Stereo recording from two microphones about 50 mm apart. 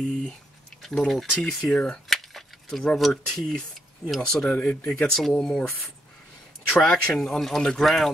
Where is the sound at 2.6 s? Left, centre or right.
Centre.